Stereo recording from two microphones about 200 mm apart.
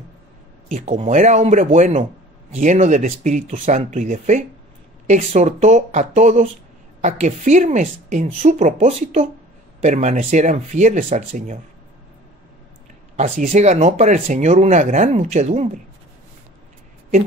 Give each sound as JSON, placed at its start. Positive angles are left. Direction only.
{"t": 0.7, "sound": "speech", "side_deg": -35}
{"t": 13.1, "sound": "speech", "side_deg": -35}